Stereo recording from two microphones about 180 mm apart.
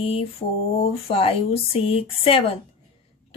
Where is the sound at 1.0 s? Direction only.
30° left (ahead or behind).